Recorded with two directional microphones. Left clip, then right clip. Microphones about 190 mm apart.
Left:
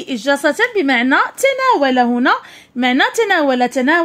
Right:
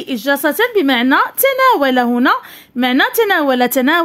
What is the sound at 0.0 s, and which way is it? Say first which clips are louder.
A woman's voice: even; 15° right (ahead or behind).